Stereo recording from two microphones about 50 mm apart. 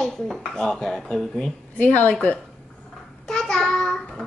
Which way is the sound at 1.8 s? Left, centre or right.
Left.